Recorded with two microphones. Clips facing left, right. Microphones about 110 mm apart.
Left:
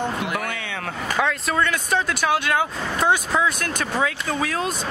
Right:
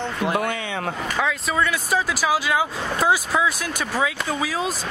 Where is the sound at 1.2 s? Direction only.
5° right (ahead or behind).